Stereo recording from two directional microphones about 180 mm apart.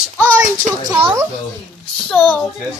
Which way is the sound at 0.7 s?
40° right (ahead or behind).